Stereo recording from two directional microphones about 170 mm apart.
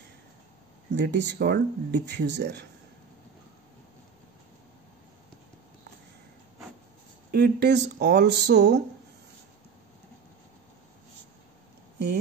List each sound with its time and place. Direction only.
0.9 s speech: 90° right
7.3 s speech: 80° right